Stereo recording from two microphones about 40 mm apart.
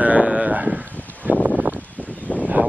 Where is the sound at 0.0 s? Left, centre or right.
Right.